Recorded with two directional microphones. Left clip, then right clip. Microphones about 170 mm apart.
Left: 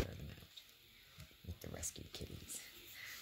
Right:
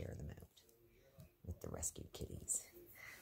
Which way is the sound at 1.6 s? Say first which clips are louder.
Right 1 dB; 20° right (ahead or behind).